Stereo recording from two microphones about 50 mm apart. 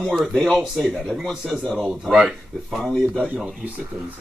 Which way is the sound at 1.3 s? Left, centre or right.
Centre.